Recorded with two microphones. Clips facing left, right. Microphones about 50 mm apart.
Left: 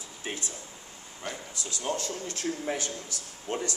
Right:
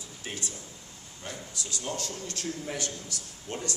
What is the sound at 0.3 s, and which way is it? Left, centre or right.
A man's voice, left.